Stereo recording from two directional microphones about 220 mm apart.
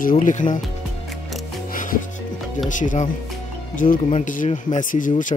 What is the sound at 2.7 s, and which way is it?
Speech, 35° left (ahead or behind).